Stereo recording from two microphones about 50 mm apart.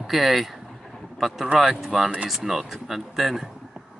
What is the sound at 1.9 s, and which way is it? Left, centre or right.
Speech, right.